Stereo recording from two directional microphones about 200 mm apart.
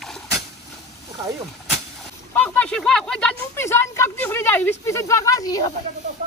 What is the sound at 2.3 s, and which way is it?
Speech, 5° left (ahead or behind).